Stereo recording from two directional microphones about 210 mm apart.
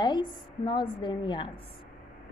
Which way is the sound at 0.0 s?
20° left (ahead or behind).